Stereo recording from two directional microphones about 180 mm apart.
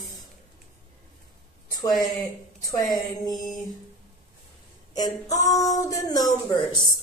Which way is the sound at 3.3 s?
Centre (ahead or behind).